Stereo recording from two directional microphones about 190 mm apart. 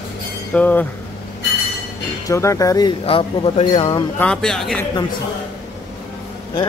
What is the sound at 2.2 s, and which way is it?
Speech, 15° left (ahead or behind).